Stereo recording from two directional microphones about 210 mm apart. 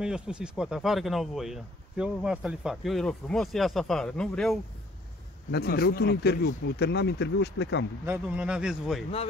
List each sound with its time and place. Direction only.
0.0 s speech: 5° right (ahead or behind)
5.5 s speech: 50° left (ahead or behind)
8.0 s speech: 10° right (ahead or behind)